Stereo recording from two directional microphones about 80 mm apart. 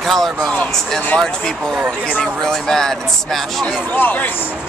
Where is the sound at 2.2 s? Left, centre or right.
Centre.